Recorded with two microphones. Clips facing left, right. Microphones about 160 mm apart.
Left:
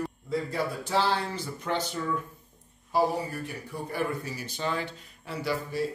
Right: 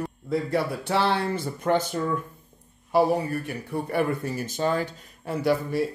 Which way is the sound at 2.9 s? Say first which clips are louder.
Right 5 dB; 65° right (ahead or behind).